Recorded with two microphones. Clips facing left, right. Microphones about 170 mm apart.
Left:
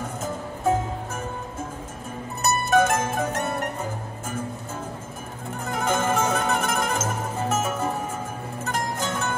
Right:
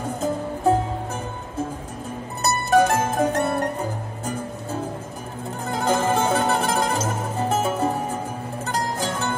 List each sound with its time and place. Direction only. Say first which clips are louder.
2.4 s music: right 2 dB; 35° right (ahead or behind)
5.7 s music: right 3 dB; 30° right (ahead or behind)